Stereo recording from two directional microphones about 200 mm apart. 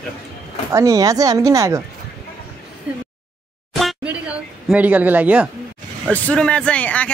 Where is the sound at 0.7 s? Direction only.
15° right (ahead or behind).